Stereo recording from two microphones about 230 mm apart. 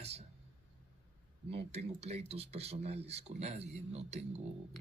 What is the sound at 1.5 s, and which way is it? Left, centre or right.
Speech, right.